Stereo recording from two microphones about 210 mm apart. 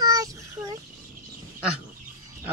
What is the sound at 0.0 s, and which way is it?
Child singing, 15° right (ahead or behind).